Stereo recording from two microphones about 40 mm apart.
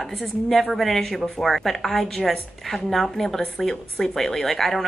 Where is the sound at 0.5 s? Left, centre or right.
Centre.